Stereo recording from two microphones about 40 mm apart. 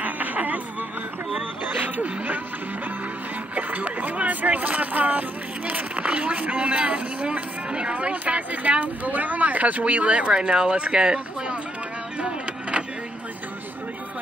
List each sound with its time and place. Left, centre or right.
0.0 s a sound: right
1.6 s speech: right
3.5 s a sound: right
5.7 s speech: right
10.3 s speech: centre
12.2 s vehicle: right